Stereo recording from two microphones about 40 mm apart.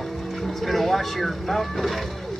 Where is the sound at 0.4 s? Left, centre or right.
Centre.